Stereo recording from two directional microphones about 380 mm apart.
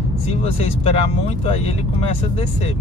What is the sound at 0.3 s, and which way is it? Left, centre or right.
Speech, centre.